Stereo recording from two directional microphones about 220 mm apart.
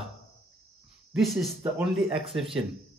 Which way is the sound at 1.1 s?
Centre (ahead or behind).